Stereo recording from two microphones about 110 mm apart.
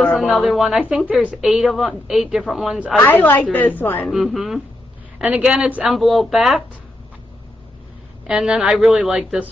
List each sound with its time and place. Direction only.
0.0 s a woman's voice: centre (ahead or behind)
3.0 s a woman's voice: 20° left (ahead or behind)
4.1 s a woman's voice: centre (ahead or behind)
8.3 s a woman's voice: 5° right (ahead or behind)